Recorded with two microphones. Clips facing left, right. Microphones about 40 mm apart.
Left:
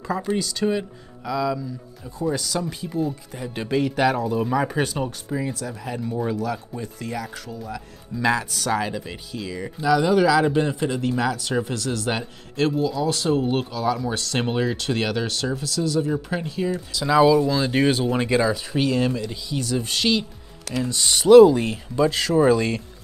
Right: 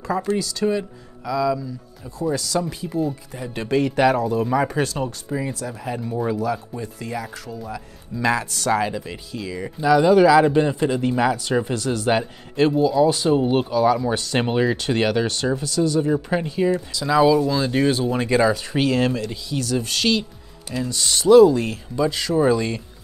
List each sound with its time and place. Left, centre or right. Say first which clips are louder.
0.0 s speech: right 3 dB; centre
0.7 s speech: right 3 dB; centre
17.0 s speech: even; centre
17.6 s speech: even; centre
18.7 s speech: right 2 dB; centre
19.6 s speech: right 1 dB; centre
21.1 s speech: left 1 dB; left
22.3 s speech: even; centre